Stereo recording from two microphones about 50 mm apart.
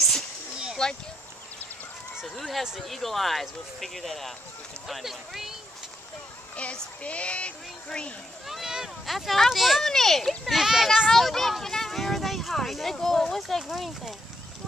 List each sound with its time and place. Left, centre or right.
0.8 s speech: centre
2.2 s speech: centre
6.5 s a child's voice: left
8.5 s a sound: centre
9.0 s a child's voice: centre
10.4 s speech: centre
11.1 s speech: centre